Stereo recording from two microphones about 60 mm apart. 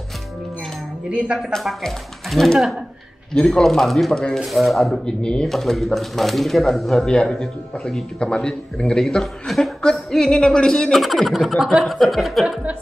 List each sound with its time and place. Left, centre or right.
1.1 s speech: centre
1.5 s a man's voice: centre
5.0 s a man's voice: centre
5.5 s speech: centre
7.1 s a man's voice: centre
11.0 s speech: centre